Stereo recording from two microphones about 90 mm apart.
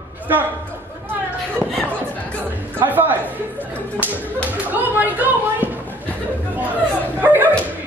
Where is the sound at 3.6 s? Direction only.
20° right (ahead or behind).